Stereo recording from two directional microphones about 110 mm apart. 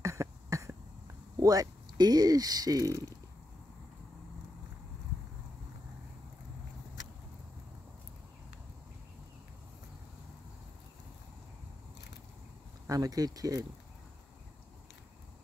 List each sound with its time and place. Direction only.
0.0 s a sound: 25° right (ahead or behind)
1.4 s speech: 35° right (ahead or behind)
12.8 s speech: 30° right (ahead or behind)